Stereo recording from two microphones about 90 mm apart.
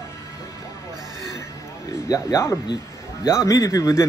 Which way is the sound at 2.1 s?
35° left (ahead or behind).